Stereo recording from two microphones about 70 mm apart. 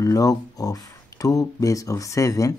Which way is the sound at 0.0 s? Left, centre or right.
Left.